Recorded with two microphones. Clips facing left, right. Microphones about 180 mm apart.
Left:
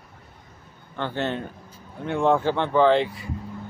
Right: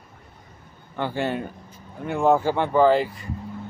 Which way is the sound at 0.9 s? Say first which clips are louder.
Right 2 dB; 10° right (ahead or behind).